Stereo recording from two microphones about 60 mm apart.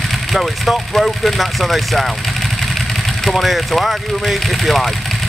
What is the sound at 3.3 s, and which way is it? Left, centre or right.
Speech, centre.